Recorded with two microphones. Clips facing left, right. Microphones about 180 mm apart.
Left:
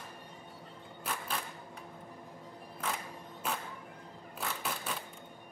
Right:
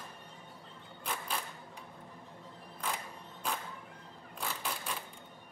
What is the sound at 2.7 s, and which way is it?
Music, 5° left (ahead or behind).